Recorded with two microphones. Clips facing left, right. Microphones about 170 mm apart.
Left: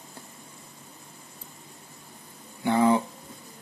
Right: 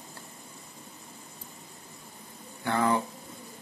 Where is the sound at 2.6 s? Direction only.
15° left (ahead or behind).